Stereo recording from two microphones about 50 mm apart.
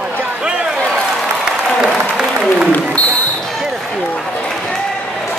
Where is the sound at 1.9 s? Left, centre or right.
Centre.